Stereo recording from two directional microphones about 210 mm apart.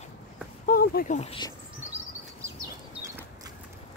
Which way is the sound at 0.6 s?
45° left (ahead or behind).